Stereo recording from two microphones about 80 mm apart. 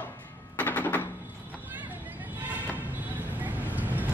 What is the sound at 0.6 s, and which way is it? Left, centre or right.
Machine gun, left.